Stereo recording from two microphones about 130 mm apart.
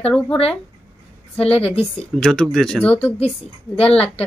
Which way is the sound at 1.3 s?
50° left (ahead or behind).